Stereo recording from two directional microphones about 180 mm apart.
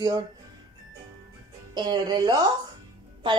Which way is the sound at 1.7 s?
25° right (ahead or behind).